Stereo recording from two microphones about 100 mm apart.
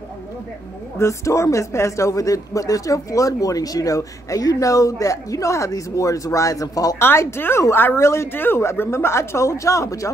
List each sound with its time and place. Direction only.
0.9 s speech: 30° left (ahead or behind)
7.0 s speech: 25° left (ahead or behind)